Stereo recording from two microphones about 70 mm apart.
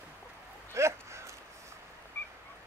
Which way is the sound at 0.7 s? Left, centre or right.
Right.